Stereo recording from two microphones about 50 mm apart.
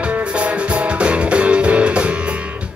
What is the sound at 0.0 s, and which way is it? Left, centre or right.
Music, right.